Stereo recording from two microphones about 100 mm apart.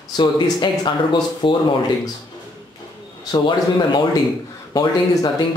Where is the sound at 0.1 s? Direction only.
50° left (ahead or behind).